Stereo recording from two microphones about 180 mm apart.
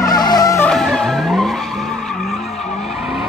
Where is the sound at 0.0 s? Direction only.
20° left (ahead or behind).